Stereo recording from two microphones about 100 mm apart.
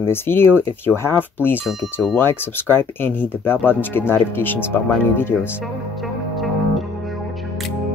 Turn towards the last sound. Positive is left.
turn(degrees=0)  # may be behind; listen again after turning